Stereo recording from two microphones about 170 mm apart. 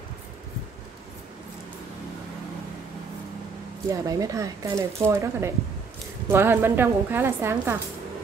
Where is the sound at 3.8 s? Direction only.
20° right (ahead or behind).